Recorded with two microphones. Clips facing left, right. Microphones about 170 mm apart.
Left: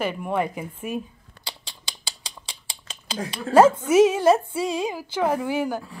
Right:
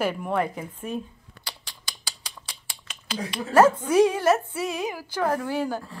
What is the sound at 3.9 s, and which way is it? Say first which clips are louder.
Speech: left 3 dB; 25° left (ahead or behind).